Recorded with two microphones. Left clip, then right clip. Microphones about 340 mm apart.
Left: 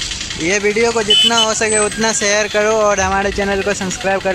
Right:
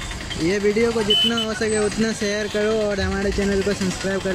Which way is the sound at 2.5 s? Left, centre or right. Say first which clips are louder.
Left 6 dB; left.